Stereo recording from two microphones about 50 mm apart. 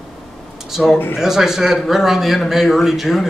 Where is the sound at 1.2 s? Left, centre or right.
Centre.